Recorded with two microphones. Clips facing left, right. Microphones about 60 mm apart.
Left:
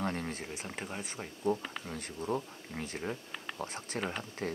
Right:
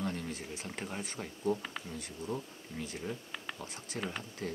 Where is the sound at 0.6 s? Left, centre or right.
Centre.